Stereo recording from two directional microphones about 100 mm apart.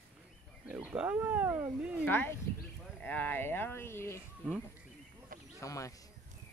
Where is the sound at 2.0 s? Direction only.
20° left (ahead or behind).